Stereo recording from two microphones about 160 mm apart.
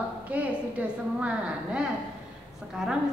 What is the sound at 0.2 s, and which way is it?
A woman's voice, 10° right (ahead or behind).